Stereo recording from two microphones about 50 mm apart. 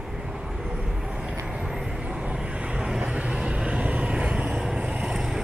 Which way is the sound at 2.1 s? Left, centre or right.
Right.